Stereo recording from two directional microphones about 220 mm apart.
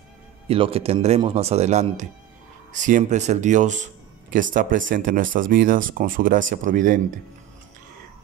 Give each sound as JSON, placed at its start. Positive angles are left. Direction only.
{"t": 0.5, "sound": "speech", "side_deg": -25}